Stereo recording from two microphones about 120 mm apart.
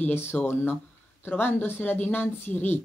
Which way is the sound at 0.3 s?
15° left (ahead or behind).